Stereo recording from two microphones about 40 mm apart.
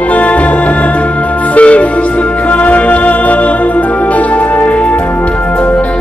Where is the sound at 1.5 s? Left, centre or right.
Left.